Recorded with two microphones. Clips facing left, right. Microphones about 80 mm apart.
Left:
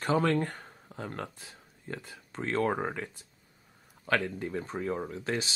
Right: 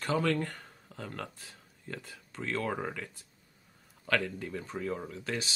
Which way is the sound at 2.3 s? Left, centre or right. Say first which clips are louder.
Left 5 dB; left.